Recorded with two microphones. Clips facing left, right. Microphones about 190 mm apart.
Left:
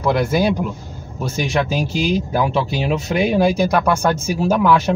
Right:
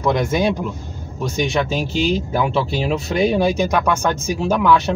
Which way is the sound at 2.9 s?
5° left (ahead or behind).